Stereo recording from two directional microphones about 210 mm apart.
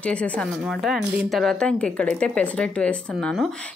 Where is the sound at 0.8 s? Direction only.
Centre (ahead or behind).